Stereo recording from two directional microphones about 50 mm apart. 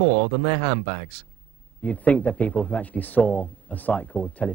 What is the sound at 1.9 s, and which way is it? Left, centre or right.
A man's voice, left.